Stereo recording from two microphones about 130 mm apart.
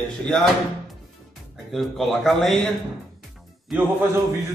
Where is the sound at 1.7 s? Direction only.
Centre (ahead or behind).